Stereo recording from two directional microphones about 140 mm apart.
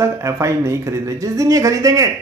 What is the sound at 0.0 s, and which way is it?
Speech, 20° right (ahead or behind).